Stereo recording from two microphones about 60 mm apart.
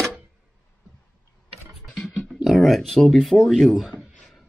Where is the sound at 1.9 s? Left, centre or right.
Centre.